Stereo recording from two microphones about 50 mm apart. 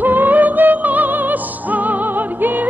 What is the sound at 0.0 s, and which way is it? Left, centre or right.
Music, right.